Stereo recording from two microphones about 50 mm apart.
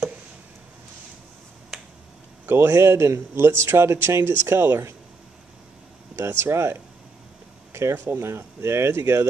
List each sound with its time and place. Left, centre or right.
1.7 s finger snapping: centre
2.4 s a man's voice: right
6.1 s speech: right
8.0 s speech: right
8.3 s a man's voice: right